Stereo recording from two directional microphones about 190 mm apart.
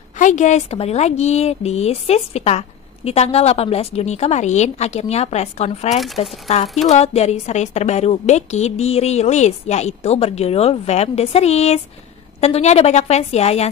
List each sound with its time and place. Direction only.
0.2 s a woman's voice: 40° left (ahead or behind)